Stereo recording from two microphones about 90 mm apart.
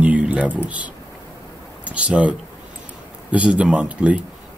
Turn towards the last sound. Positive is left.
turn(degrees=-15)  # may be behind; listen again after turning